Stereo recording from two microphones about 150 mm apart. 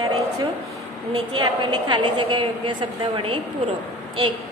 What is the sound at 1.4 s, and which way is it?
A woman's voice, 30° right (ahead or behind).